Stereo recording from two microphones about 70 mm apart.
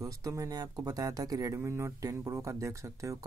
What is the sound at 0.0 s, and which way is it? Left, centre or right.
Speech, right.